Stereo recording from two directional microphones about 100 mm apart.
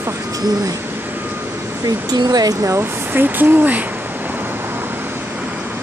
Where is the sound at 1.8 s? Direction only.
40° right (ahead or behind); by 3.9 s 15° right (ahead or behind).